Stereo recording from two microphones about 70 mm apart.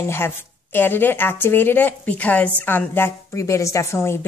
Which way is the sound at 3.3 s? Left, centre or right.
Left.